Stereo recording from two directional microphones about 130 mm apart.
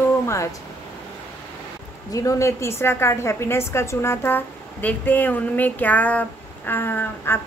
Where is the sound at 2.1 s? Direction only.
25° left (ahead or behind).